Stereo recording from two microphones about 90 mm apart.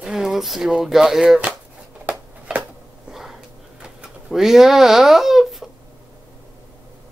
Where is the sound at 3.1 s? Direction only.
5° right (ahead or behind).